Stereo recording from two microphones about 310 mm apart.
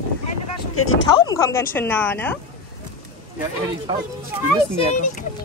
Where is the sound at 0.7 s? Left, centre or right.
Left.